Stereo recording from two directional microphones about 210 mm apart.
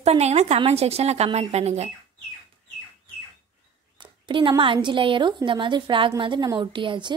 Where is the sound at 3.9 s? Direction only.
25° right (ahead or behind).